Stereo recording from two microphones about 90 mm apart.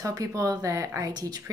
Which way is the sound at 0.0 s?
40° right (ahead or behind).